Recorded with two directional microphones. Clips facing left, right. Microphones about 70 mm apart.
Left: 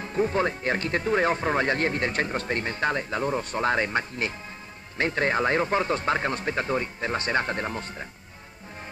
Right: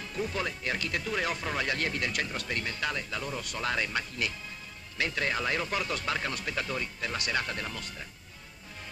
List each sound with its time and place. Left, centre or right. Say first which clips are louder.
0.0 s speech: left 9 dB; left